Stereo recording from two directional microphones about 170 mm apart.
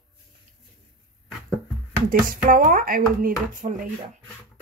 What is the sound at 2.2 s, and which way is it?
Speech, 55° right (ahead or behind).